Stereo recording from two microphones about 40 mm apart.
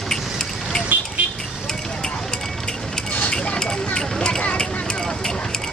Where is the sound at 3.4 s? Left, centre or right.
Centre.